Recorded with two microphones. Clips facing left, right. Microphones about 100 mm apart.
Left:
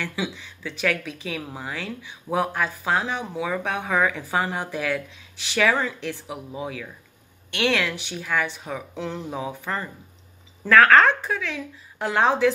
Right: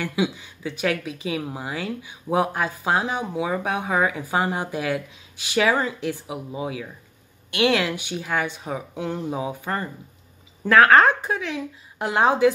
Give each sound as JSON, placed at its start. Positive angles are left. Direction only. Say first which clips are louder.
{"t": 0.0, "sound": "speech", "louder": "right 5 dB", "side_deg": -15}